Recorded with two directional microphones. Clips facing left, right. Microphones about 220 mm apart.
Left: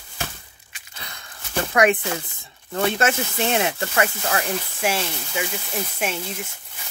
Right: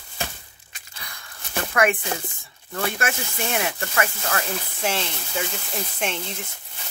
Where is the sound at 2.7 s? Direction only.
25° left (ahead or behind).